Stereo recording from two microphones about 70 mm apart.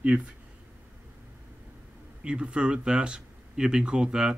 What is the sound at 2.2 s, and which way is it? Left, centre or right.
Speech, centre.